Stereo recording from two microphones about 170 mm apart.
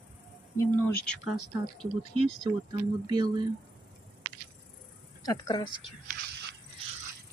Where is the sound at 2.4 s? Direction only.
25° right (ahead or behind).